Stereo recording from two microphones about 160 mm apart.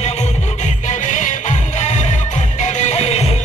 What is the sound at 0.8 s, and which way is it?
Music, 50° left (ahead or behind).